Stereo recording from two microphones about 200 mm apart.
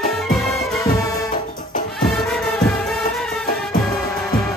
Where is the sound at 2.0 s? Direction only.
Centre (ahead or behind).